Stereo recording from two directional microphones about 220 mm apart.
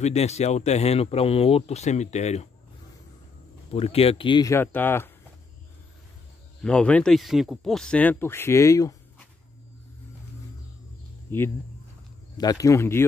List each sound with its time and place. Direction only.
0.0 s speech: 30° left (ahead or behind)
3.7 s speech: 25° left (ahead or behind); by 5.1 s 10° left (ahead or behind)
6.6 s speech: 5° left (ahead or behind)
11.3 s speech: 10° left (ahead or behind)